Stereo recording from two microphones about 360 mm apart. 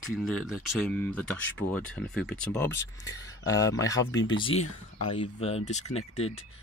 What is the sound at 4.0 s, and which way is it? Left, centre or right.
Speech, left.